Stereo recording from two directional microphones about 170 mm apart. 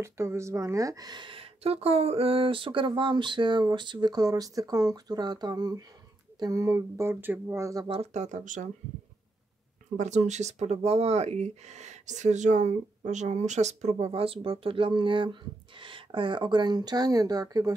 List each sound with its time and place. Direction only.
0.0 s speech: 15° right (ahead or behind)
7.9 s speech: 40° right (ahead or behind)
9.9 s speech: 45° right (ahead or behind); by 17.7 s 20° right (ahead or behind)